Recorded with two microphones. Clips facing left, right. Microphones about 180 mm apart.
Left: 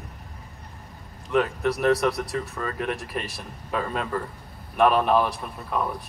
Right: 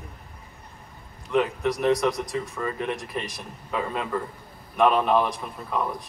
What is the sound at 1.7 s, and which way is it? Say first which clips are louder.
Speech: left 1 dB; 15° right (ahead or behind).